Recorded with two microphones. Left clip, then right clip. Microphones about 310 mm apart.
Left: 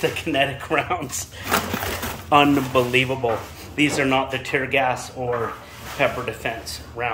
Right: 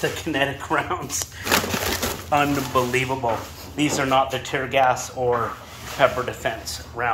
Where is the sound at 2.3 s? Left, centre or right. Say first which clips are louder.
Left 4 dB; centre.